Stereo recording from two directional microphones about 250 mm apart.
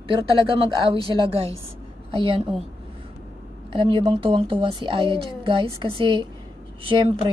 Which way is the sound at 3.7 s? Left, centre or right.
Right.